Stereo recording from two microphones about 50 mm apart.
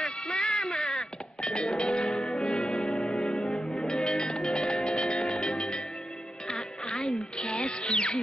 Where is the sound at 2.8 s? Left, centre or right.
Centre.